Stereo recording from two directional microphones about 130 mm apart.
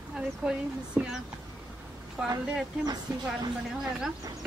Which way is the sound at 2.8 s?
30° right (ahead or behind).